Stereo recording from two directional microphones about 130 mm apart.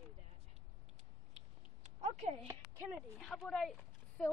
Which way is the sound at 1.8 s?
65° right (ahead or behind).